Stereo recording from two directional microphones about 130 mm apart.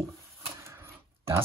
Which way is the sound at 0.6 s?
20° right (ahead or behind).